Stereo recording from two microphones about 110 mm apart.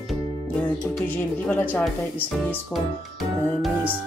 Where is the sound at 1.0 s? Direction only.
15° left (ahead or behind).